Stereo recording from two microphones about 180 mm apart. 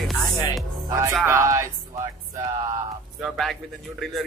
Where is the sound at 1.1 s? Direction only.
15° right (ahead or behind).